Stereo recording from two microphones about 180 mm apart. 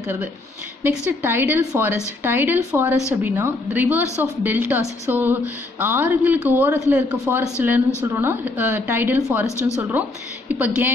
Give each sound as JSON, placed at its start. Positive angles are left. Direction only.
{"t": 0.0, "sound": "a woman's voice", "side_deg": -5}